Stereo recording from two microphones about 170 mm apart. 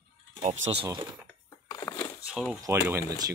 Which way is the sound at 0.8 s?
25° right (ahead or behind).